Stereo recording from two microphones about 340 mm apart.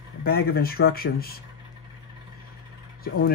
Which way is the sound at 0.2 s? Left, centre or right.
Left.